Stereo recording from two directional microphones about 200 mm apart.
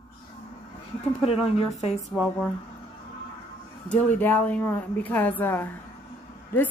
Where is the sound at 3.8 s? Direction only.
10° left (ahead or behind).